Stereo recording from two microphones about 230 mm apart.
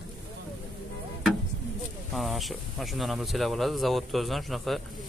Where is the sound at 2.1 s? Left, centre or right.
Centre.